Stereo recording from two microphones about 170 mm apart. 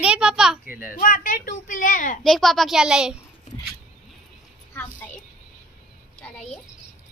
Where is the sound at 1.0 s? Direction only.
55° left (ahead or behind).